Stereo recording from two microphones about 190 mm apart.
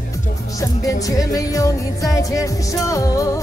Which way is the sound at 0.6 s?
20° left (ahead or behind).